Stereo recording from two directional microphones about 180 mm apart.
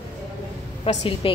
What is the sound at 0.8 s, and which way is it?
Speech, 30° left (ahead or behind).